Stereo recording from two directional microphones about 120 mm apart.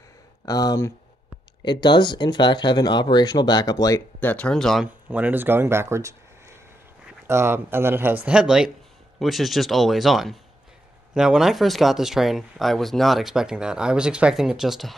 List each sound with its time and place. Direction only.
0.5 s speech: 30° left (ahead or behind)
1.6 s speech: 40° left (ahead or behind)
4.2 s speech: 15° left (ahead or behind)
4.8 s speech: 15° right (ahead or behind)
7.2 s speech: 20° right (ahead or behind)
8.3 s speech: 5° right (ahead or behind)